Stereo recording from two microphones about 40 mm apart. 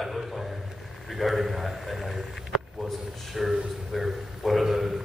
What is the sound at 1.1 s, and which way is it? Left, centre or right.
A man's voice, centre.